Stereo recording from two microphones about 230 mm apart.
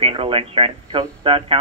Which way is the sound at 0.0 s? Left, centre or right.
Right.